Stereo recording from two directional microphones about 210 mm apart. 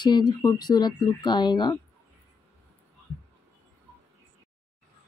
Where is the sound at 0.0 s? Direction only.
20° left (ahead or behind).